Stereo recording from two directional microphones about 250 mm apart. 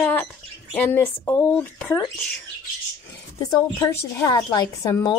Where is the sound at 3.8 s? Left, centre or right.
Centre.